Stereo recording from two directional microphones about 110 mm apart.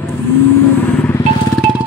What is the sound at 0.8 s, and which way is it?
Vehicle, 15° left (ahead or behind).